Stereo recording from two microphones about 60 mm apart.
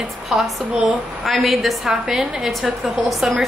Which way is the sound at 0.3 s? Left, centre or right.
Centre.